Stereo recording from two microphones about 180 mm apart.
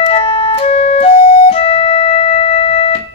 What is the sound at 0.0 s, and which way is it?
Music, 30° left (ahead or behind).